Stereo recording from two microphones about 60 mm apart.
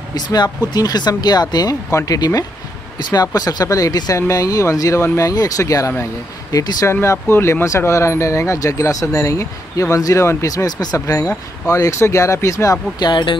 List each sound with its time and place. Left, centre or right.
0.3 s speech: left
3.6 s speech: left
5.2 s speech: left
6.5 s speech: left
6.9 s speech: left
7.6 s speech: left